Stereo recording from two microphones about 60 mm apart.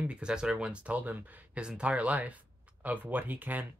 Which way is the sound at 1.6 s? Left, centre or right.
Centre.